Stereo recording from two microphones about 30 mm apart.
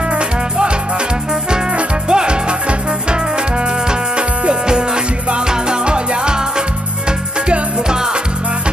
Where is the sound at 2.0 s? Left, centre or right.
Right.